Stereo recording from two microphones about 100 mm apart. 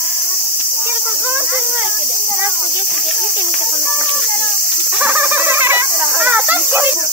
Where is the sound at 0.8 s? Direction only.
15° right (ahead or behind).